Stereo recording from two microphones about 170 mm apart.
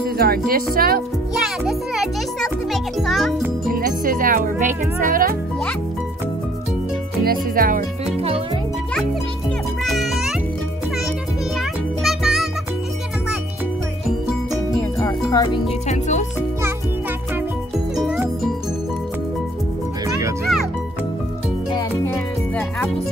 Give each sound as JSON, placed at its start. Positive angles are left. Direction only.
{"t": 0.0, "sound": "speech", "side_deg": -65}
{"t": 1.3, "sound": "music", "side_deg": 0}
{"t": 3.7, "sound": "speech", "side_deg": -55}
{"t": 7.2, "sound": "speech", "side_deg": -55}
{"t": 9.8, "sound": "music", "side_deg": 0}
{"t": 11.5, "sound": "music", "side_deg": 0}
{"t": 14.8, "sound": "music", "side_deg": 15}
{"t": 15.9, "sound": "speech", "side_deg": 45}
{"t": 17.9, "sound": "music", "side_deg": 0}
{"t": 22.0, "sound": "music", "side_deg": 10}